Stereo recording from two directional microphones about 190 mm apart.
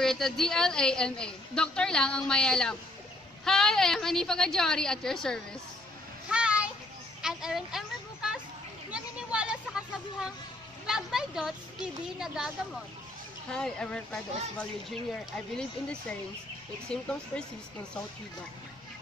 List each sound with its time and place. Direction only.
0.0 s a woman's voice: centre (ahead or behind)
6.3 s a sound: 5° right (ahead or behind)
10.9 s a woman's voice: 5° right (ahead or behind)
13.5 s a woman's voice: 5° left (ahead or behind)